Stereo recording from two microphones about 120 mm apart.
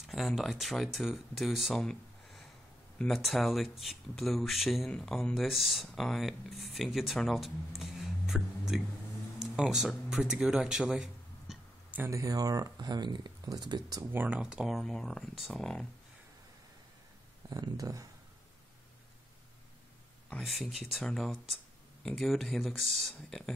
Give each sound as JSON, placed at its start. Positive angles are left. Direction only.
{"t": 0.0, "sound": "speech", "side_deg": 0}
{"t": 9.4, "sound": "a sound", "side_deg": -5}
{"t": 12.0, "sound": "speech", "side_deg": -25}
{"t": 14.1, "sound": "speech", "side_deg": -15}
{"t": 17.5, "sound": "speech", "side_deg": -30}
{"t": 20.2, "sound": "speech", "side_deg": 5}